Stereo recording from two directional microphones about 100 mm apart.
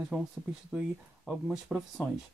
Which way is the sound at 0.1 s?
10° right (ahead or behind).